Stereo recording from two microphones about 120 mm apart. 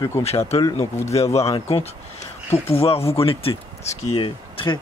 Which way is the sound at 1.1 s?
60° left (ahead or behind).